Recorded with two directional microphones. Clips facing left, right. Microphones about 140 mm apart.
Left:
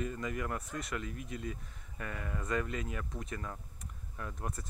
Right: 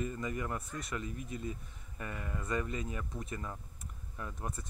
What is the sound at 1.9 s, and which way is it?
Speech, 10° right (ahead or behind).